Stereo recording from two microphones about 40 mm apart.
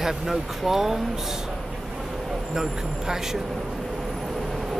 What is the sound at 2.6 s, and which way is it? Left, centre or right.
Speech, centre.